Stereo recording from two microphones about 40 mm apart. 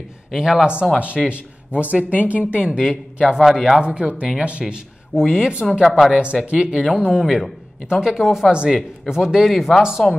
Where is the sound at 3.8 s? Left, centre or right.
Right.